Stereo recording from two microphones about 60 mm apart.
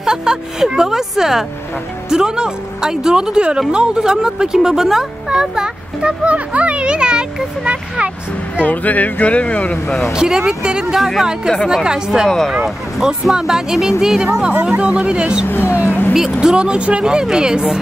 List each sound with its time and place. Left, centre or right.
0.0 s speech: centre
8.6 s speech: left
10.1 s speech: centre
12.3 s speech: centre
13.0 s speech: centre
15.4 s speech: left
16.3 s speech: centre